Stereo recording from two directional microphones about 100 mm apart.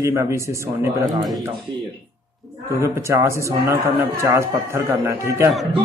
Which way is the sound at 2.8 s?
30° right (ahead or behind).